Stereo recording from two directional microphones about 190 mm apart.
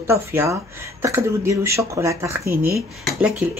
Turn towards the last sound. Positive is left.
turn(degrees=0)  # may be behind; listen again after turning